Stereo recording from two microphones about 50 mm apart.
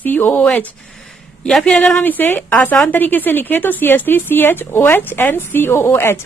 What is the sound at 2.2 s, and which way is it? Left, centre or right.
Speech, left.